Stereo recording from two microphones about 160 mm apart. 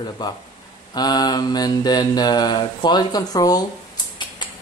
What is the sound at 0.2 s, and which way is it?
Mantra, 25° left (ahead or behind).